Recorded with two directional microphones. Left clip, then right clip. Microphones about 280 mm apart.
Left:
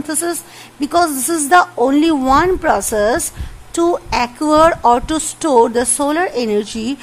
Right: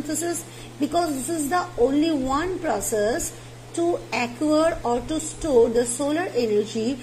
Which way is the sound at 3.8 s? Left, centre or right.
Centre.